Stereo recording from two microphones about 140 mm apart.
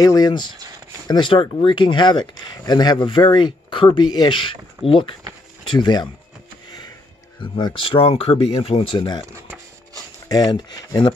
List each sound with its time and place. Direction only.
0.0 s speech: 25° left (ahead or behind)
7.5 s speech: 40° left (ahead or behind)
9.3 s a sound: 20° right (ahead or behind)
10.2 s speech: 30° left (ahead or behind)